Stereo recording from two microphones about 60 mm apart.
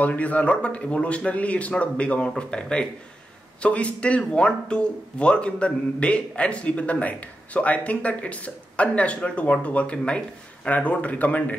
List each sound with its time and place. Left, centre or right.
0.0 s speech: left